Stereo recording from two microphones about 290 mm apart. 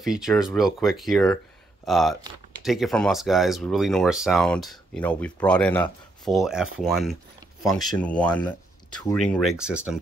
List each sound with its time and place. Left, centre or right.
0.0 s speech: centre